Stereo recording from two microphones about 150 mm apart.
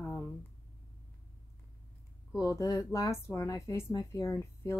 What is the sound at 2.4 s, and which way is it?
Speech, 20° left (ahead or behind).